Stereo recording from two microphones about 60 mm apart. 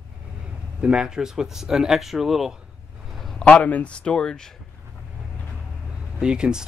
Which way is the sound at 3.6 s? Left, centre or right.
Left.